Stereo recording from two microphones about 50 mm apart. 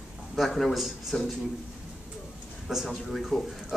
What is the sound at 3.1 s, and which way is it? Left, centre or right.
Speech, centre.